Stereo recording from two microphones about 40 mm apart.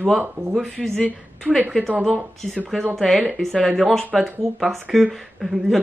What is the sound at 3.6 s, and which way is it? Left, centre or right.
A woman's voice, centre.